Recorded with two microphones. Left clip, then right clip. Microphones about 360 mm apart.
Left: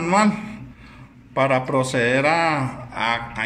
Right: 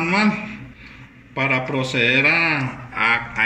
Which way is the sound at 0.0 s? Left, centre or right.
Left.